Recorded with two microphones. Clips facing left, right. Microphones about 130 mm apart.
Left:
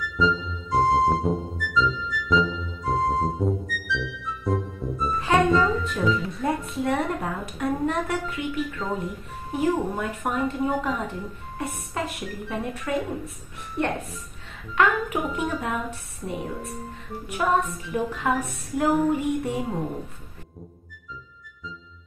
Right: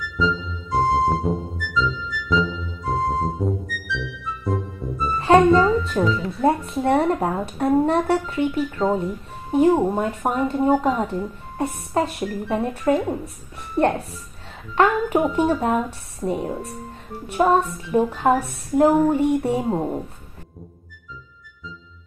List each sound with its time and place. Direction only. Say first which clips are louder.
0.0 s music: even; centre (ahead or behind)
6.1 s a child's voice: right 6 dB; 30° right (ahead or behind)